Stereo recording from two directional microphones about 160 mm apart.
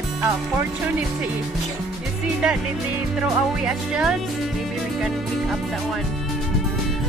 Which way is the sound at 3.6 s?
5° right (ahead or behind).